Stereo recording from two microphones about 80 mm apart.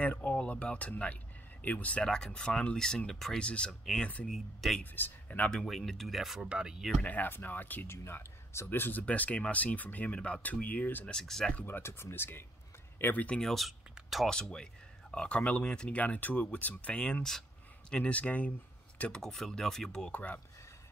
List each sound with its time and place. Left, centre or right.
0.0 s speech: centre
4.3 s speech: centre
4.9 s speech: left
5.5 s speech: centre
7.0 s speech: left
11.1 s speech: centre
11.6 s speech: left
13.4 s speech: centre
14.3 s speech: centre